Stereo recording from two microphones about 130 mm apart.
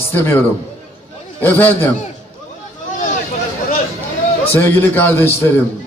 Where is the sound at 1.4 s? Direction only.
15° left (ahead or behind).